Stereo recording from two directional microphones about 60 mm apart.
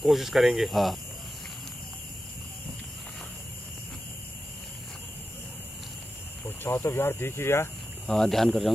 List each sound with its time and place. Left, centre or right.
0.0 s speech: centre
6.4 s speech: left
8.1 s speech: centre